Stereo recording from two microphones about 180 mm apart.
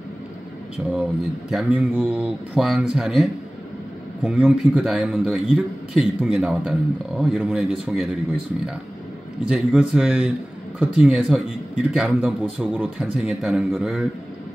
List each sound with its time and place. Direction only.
1.5 s a man's voice: 5° right (ahead or behind)
9.5 s a man's voice: 5° right (ahead or behind)